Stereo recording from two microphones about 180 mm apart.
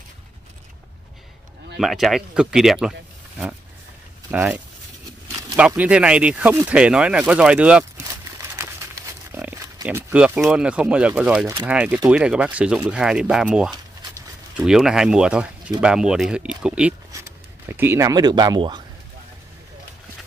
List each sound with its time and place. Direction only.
1.8 s speech: centre (ahead or behind)
4.3 s speech: 5° right (ahead or behind)
5.6 s speech: 5° right (ahead or behind)
9.3 s pig: 10° right (ahead or behind)
9.8 s speech: 5° right (ahead or behind); by 18.8 s 25° right (ahead or behind)